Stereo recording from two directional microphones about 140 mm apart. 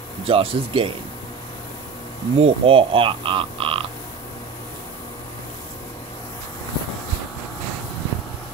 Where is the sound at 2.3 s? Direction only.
45° right (ahead or behind).